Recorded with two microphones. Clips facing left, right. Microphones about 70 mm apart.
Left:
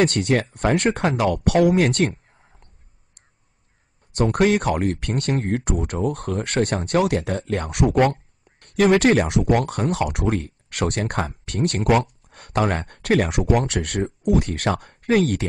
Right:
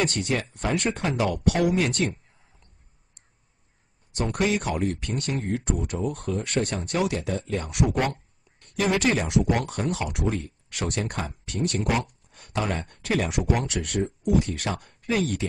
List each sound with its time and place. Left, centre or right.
0.0 s speech: left
4.1 s speech: left